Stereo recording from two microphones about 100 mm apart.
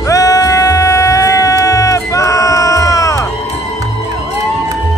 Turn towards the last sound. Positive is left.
turn(degrees=35)  # may be behind; listen again after turning